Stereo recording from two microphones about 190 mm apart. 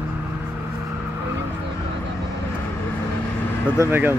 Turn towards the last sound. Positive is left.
turn(degrees=-10)  # may be behind; listen again after turning